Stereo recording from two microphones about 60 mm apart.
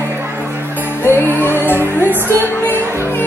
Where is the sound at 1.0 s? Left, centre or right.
Left.